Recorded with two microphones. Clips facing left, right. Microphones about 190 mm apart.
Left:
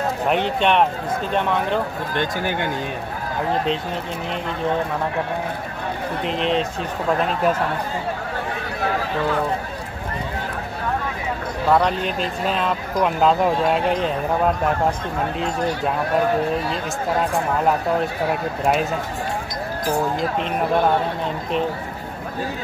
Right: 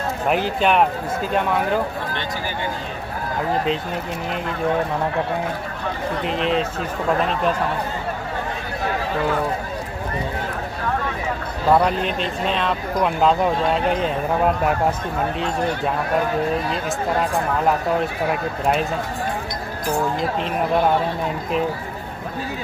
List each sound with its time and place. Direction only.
0.3 s speech: 5° right (ahead or behind)
2.1 s speech: 60° left (ahead or behind)
6.2 s speech: centre (ahead or behind)
11.7 s speech: 5° right (ahead or behind)